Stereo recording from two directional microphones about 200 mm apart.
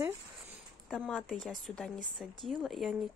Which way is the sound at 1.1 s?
5° left (ahead or behind).